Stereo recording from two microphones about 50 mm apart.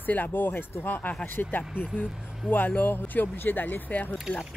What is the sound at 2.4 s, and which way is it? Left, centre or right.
Speech, right.